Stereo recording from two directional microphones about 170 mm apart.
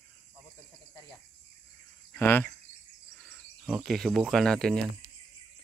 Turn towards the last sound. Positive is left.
turn(degrees=5)  # may be behind; listen again after turning